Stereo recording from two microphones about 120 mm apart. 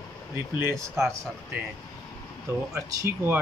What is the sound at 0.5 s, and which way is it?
Speech, 20° right (ahead or behind).